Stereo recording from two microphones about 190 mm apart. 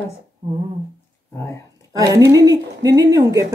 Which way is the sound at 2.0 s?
15° right (ahead or behind).